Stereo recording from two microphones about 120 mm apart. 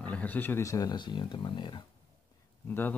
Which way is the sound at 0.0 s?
10° left (ahead or behind).